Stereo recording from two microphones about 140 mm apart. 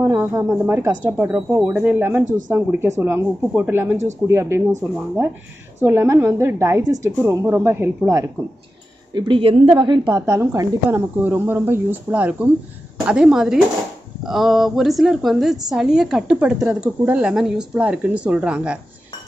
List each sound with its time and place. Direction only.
0.1 s a woman's voice: 20° right (ahead or behind)
2.2 s speech: 65° right (ahead or behind)
2.5 s a woman's voice: 15° right (ahead or behind)
5.9 s a woman's voice: 15° right (ahead or behind)
9.1 s a woman's voice: 40° right (ahead or behind)
10.0 s a woman's voice: 20° right (ahead or behind)